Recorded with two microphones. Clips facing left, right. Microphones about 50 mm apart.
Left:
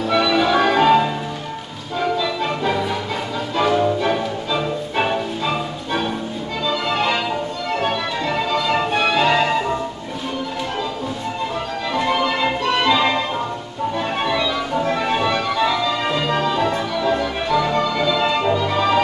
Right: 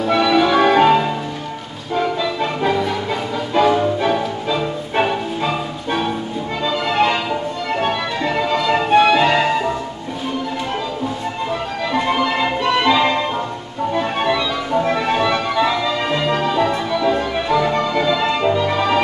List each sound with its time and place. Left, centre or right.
0.1 s music: centre
2.0 s a sound: centre
3.6 s music: centre
6.7 s music: centre
12.1 s music: centre
16.2 s music: centre
17.0 s music: centre
17.8 s music: right
18.2 s music: centre